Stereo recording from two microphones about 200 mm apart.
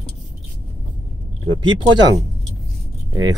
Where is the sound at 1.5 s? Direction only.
25° right (ahead or behind).